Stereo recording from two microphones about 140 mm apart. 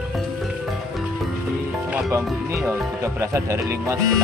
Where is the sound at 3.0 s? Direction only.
20° right (ahead or behind).